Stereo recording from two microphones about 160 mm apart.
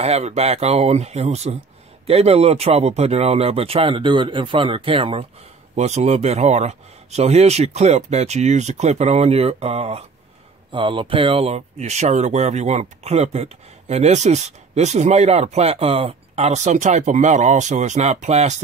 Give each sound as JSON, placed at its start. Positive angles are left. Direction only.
{"t": 0.0, "sound": "speech", "side_deg": -40}